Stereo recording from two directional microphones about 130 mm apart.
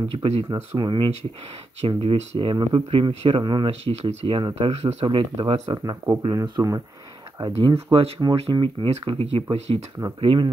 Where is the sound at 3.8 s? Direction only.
55° right (ahead or behind); by 6.8 s 25° right (ahead or behind).